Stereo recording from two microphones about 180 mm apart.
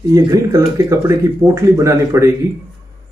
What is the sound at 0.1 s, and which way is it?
Speech, 20° right (ahead or behind).